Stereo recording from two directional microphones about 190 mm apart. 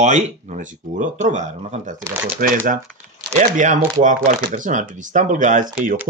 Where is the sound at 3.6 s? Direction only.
40° right (ahead or behind).